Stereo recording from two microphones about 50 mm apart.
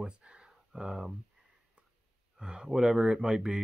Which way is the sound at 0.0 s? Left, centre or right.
Centre.